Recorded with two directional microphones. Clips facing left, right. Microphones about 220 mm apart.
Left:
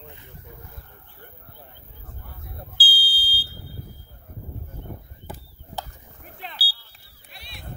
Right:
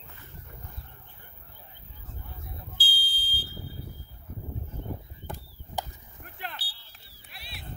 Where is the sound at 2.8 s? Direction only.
35° left (ahead or behind).